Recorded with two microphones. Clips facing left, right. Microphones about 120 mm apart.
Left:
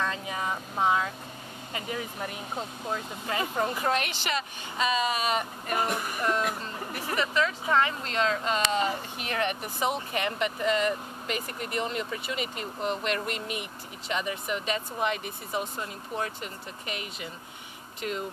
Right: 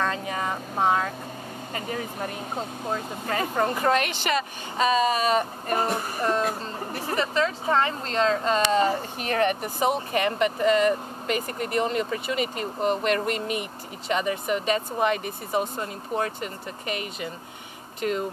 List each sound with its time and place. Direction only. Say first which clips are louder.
0.0 s vehicle: right 4 dB; 55° right (ahead or behind)
1.7 s speech: right 2 dB; 40° right (ahead or behind)